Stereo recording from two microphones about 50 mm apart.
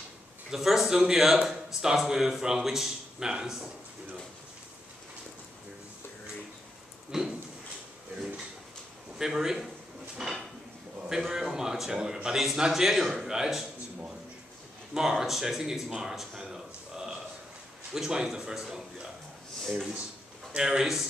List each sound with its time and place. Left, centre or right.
0.5 s speech: centre
7.1 s a sound: centre
9.2 s speech: centre
11.1 s speech: centre
19.6 s a man's voice: centre
20.5 s speech: centre